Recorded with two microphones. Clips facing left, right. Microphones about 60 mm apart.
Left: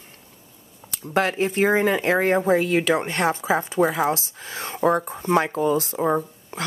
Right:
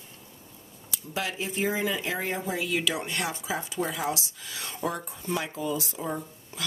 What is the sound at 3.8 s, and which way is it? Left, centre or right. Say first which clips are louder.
Speech: left 10 dB; left.